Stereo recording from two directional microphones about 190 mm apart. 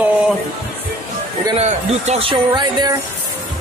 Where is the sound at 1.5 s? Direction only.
35° right (ahead or behind).